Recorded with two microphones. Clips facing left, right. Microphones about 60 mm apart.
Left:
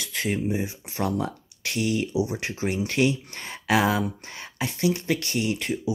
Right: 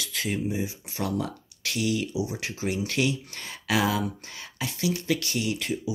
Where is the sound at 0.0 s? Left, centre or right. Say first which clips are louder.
Left 2 dB; left.